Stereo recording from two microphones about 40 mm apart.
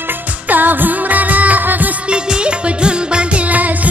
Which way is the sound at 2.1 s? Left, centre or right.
Right.